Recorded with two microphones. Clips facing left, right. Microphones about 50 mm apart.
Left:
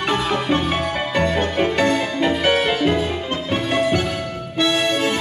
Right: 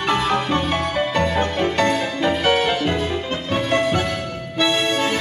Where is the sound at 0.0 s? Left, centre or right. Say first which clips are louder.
Right 1 dB; centre.